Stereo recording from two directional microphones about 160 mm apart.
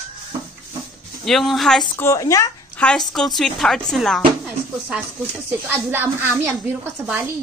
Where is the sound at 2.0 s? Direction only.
20° left (ahead or behind).